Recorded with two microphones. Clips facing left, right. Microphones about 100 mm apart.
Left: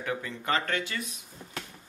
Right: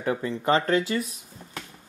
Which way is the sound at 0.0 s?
30° right (ahead or behind).